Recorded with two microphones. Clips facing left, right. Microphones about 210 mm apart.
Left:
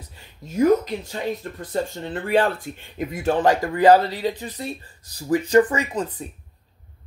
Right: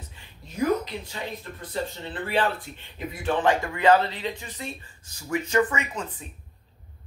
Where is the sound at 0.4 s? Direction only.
45° left (ahead or behind).